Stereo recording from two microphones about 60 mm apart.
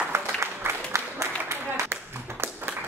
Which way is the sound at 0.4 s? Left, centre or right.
Right.